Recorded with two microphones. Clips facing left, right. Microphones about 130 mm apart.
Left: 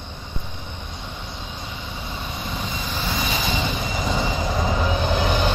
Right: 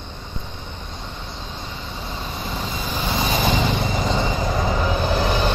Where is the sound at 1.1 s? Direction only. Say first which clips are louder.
Right 1 dB; 5° left (ahead or behind).